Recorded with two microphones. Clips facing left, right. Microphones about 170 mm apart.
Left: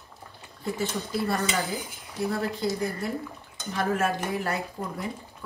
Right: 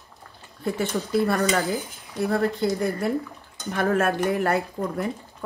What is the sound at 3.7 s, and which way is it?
Speech, 60° right (ahead or behind).